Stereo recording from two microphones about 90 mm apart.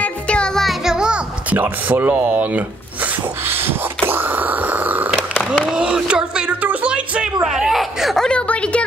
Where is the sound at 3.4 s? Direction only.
25° right (ahead or behind).